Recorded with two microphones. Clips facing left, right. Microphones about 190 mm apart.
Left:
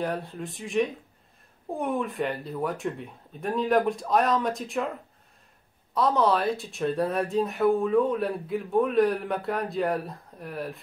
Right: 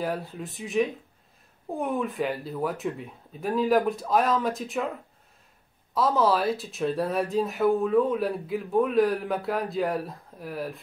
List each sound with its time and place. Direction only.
0.0 s speech: centre (ahead or behind)
5.9 s speech: centre (ahead or behind)